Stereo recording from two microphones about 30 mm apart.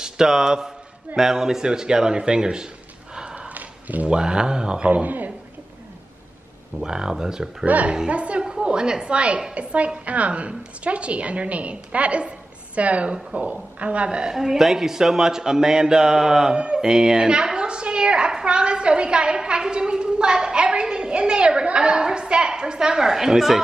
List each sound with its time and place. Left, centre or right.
0.0 s speech: centre
3.3 s snort: right
4.1 s speech: right
4.8 s a woman's voice: right
6.8 s speech: right
7.6 s a woman's voice: right
8.1 s a woman's voice: right
8.5 s a sound: right
9.1 s a woman's voice: right
14.3 s speech: centre
16.5 s speech: right
16.8 s a woman's voice: right